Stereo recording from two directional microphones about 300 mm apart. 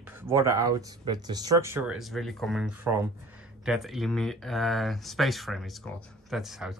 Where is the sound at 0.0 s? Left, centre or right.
Centre.